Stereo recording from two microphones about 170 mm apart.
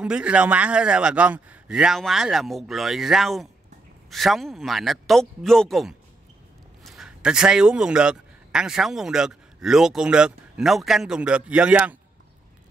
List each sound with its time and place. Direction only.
0.0 s a man's voice: 5° right (ahead or behind)